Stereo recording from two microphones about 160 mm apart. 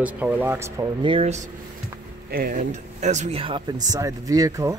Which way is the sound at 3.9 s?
20° right (ahead or behind).